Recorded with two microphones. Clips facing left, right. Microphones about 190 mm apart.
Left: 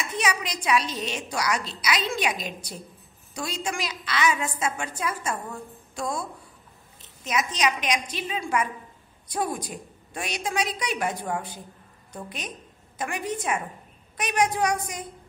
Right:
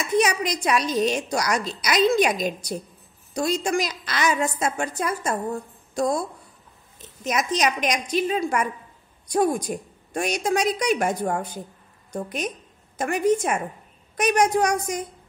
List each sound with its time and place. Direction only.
0.2 s a woman's voice: 45° right (ahead or behind)
7.2 s a woman's voice: 45° right (ahead or behind)